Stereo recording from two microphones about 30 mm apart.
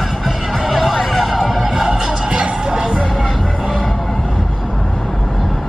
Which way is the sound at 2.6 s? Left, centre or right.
Right.